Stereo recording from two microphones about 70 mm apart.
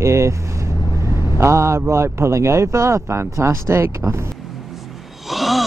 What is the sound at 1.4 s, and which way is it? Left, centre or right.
Speech, right.